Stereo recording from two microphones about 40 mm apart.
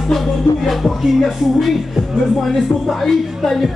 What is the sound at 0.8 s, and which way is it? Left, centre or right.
Music, centre.